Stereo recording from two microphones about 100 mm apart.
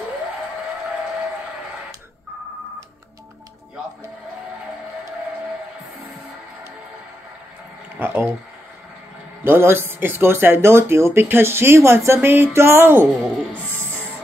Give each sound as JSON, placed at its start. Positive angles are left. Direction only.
{"t": 8.0, "sound": "speech", "side_deg": -15}
{"t": 9.4, "sound": "speech", "side_deg": -20}